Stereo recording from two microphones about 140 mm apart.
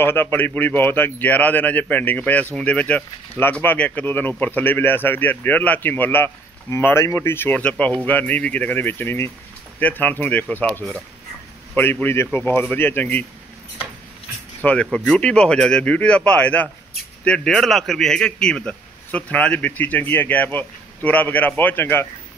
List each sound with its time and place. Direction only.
0.0 s speech: 15° left (ahead or behind)
14.6 s speech: 10° left (ahead or behind)